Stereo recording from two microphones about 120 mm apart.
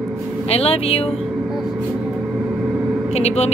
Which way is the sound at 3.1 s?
65° left (ahead or behind).